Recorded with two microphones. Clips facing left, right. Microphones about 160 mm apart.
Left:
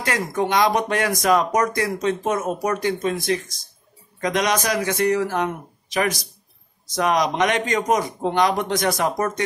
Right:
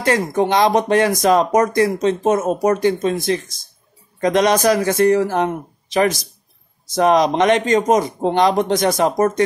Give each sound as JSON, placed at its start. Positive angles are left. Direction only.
{"t": 0.0, "sound": "a man's voice", "side_deg": -25}
{"t": 7.0, "sound": "speech", "side_deg": -30}